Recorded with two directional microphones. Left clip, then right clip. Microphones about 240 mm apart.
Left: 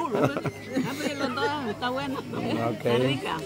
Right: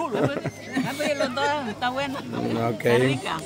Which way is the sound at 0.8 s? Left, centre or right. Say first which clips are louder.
Right 7 dB; right.